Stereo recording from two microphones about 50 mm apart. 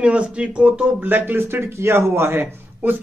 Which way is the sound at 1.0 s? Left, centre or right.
Right.